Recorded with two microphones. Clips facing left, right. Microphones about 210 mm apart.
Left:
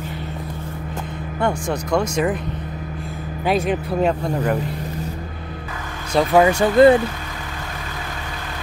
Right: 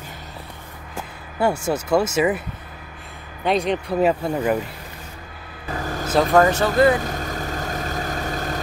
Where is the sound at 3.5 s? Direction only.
5° left (ahead or behind).